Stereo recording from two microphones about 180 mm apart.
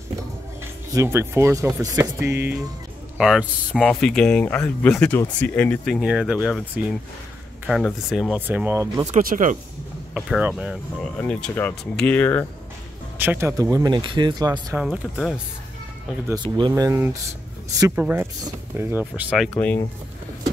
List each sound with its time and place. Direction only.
0.9 s speech: 15° right (ahead or behind); by 5.9 s 10° left (ahead or behind)
5.9 s speech: 5° right (ahead or behind)
9.0 s speech: 45° right (ahead or behind)
10.1 s speech: 5° right (ahead or behind)
11.1 s speech: 10° left (ahead or behind)
13.2 s speech: 10° right (ahead or behind)
14.9 s speech: centre (ahead or behind)
16.4 s speech: 25° right (ahead or behind)
19.3 s speech: centre (ahead or behind)